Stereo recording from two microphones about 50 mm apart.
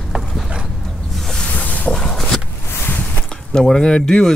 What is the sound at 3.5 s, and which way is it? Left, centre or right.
Speech, centre.